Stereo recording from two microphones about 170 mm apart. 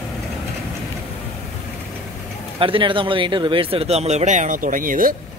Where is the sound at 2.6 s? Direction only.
30° right (ahead or behind).